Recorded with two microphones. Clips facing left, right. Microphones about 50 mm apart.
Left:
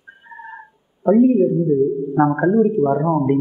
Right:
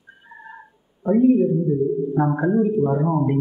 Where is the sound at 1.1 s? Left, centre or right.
Left.